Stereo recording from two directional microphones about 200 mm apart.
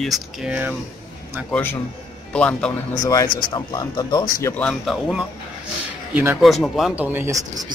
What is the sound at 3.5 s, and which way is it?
Speech, 20° left (ahead or behind).